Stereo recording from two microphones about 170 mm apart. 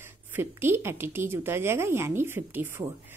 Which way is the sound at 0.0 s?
15° right (ahead or behind).